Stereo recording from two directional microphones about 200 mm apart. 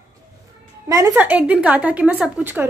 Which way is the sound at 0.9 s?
15° right (ahead or behind).